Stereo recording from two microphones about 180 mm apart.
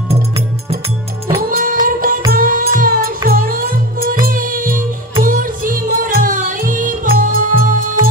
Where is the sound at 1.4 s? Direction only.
50° right (ahead or behind).